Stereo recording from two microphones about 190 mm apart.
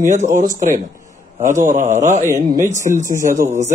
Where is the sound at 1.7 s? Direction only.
40° right (ahead or behind).